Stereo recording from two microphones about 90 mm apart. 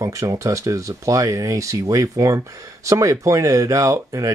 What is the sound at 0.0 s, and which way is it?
Speech, 35° right (ahead or behind).